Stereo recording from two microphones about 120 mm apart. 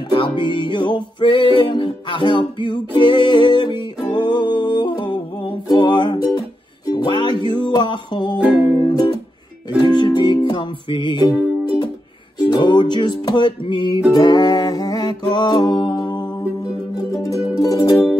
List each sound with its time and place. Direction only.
0.1 s music: 45° left (ahead or behind)
12.4 s music: 40° left (ahead or behind)
16.9 s music: 25° left (ahead or behind)